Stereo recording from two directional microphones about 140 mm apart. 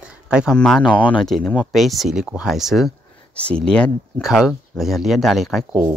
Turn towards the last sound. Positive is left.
turn(degrees=0)  # may be behind; listen again after turning